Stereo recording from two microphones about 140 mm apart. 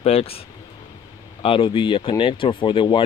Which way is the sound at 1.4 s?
40° left (ahead or behind).